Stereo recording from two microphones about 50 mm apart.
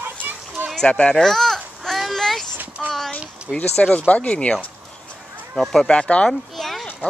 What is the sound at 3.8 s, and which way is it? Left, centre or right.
Speech, left.